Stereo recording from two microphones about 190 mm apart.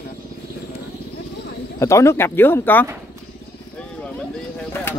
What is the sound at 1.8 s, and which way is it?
Speech, 15° left (ahead or behind).